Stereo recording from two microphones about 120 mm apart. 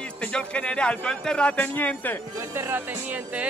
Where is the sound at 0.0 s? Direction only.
10° left (ahead or behind).